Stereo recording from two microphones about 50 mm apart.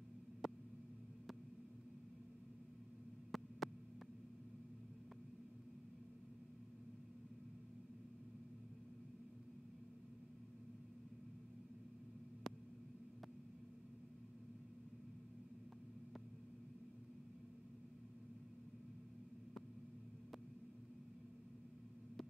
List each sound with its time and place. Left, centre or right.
0.4 s vehicle: centre
3.3 s hum: centre
12.4 s a sound: centre